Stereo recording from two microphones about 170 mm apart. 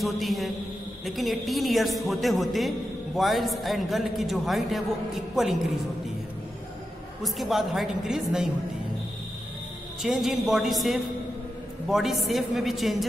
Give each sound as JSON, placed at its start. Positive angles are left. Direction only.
{"t": 0.0, "sound": "a man's voice", "side_deg": 0}
{"t": 7.2, "sound": "a man's voice", "side_deg": 0}
{"t": 10.0, "sound": "a man's voice", "side_deg": 0}